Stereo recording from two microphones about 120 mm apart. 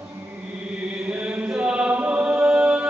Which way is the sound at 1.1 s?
10° right (ahead or behind).